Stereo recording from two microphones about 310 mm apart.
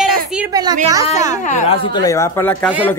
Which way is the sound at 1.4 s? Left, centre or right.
Left.